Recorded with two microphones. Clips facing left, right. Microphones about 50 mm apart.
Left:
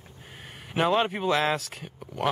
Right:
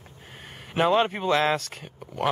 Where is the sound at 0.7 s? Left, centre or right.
Centre.